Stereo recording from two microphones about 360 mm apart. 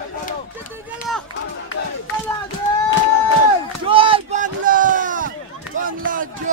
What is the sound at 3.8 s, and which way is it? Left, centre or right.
Chop, centre.